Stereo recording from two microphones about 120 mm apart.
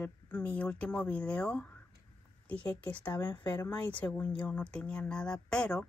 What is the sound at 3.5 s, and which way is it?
Speech, 30° left (ahead or behind).